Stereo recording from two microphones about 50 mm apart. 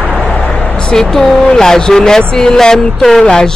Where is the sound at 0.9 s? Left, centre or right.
Centre.